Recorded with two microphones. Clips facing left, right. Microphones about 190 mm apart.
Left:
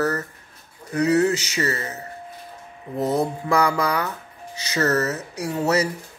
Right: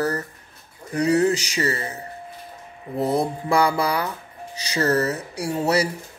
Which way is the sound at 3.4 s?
30° right (ahead or behind).